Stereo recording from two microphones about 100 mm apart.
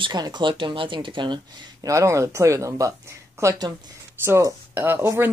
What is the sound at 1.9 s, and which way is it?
Speech, 30° right (ahead or behind).